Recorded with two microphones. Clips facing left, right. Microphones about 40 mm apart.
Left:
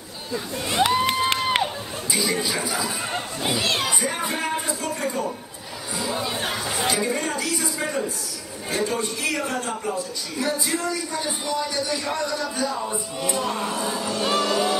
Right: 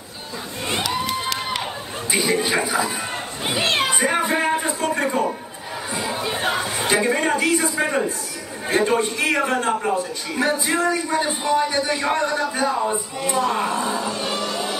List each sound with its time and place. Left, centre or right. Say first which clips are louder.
0.8 s crowd: left 6 dB; left
2.0 s a man's voice: right 4 dB; right
3.5 s a sound: right 5 dB; right
6.3 s chatter: right 4 dB; right
6.9 s a man's voice: right 7 dB; right
13.8 s music: right 2 dB; centre
14.2 s music: left 3 dB; left